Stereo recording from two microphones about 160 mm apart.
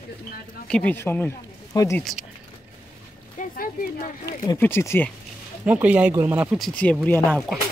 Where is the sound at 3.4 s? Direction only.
60° left (ahead or behind).